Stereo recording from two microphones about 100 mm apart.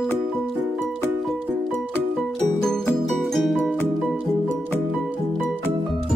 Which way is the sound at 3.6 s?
15° left (ahead or behind).